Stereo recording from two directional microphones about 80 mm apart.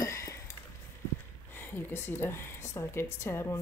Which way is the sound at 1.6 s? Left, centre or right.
Left.